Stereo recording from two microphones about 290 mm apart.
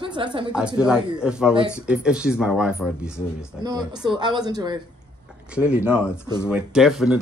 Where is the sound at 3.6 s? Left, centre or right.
Centre.